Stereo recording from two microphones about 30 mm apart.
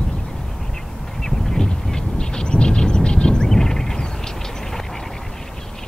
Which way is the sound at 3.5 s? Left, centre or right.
Centre.